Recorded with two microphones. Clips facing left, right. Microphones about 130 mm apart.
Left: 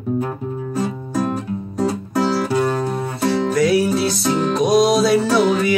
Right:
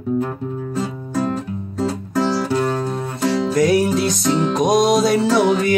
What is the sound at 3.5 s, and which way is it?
Music, 45° right (ahead or behind).